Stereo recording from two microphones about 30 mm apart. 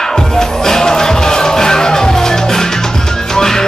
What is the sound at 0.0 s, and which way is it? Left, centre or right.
Music, left.